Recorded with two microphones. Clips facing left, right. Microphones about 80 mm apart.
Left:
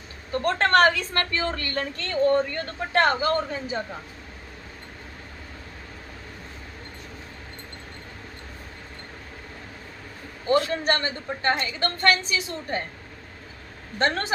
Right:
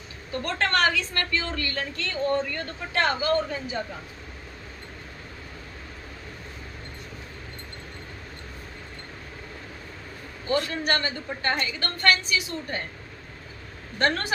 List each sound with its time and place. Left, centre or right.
0.3 s a woman's voice: left
10.5 s a woman's voice: left
13.9 s a woman's voice: left